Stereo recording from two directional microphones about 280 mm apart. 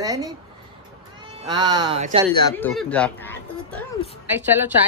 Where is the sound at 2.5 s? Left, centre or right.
Centre.